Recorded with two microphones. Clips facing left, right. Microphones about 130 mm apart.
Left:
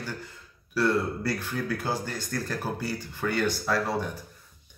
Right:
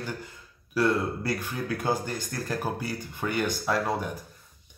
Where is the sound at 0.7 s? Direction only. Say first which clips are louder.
Even; 15° right (ahead or behind).